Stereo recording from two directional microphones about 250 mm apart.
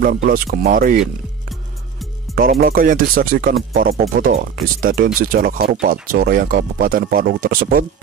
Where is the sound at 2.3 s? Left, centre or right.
Right.